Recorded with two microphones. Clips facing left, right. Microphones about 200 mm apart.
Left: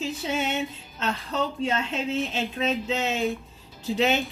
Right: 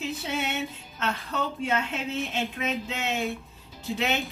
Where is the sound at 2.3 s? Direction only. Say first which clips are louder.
Left 3 dB; 30° left (ahead or behind).